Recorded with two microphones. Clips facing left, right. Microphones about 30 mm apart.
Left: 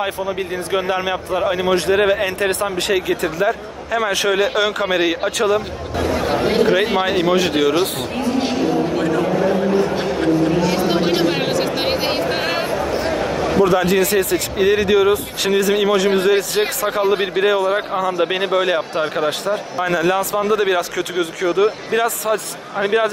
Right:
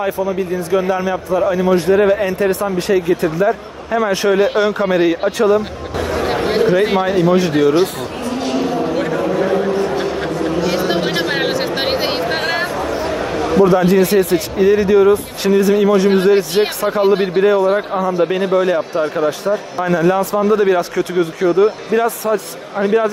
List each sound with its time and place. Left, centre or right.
0.7 s a man's voice: left
1.9 s speech: left
7.1 s speech: left
10.1 s vehicle: centre
11.1 s a sound: centre
13.7 s speech: left
17.2 s speech: left
18.0 s speech: left
22.8 s speech: left